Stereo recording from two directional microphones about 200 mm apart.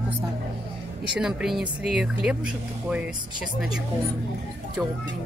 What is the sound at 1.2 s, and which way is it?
Speech, 5° right (ahead or behind).